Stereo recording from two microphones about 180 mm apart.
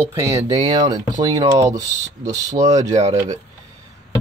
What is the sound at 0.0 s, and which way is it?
Speech, 15° right (ahead or behind).